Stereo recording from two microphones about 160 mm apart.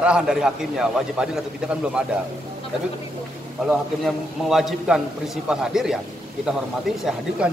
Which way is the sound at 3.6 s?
Centre (ahead or behind).